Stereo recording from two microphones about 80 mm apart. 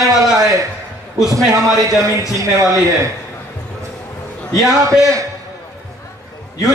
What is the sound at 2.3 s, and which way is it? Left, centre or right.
Speech, right.